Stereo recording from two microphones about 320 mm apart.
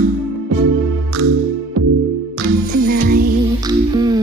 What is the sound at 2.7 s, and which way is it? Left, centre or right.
Music, right.